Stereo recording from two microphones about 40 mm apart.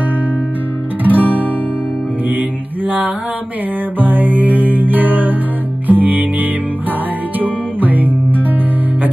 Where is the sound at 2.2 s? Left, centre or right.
Right.